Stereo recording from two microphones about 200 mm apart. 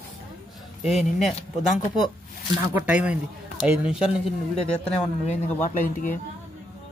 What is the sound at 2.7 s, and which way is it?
Speech, 5° right (ahead or behind).